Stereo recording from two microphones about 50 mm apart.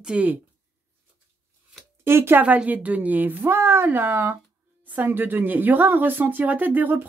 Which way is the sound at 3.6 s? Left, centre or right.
Right.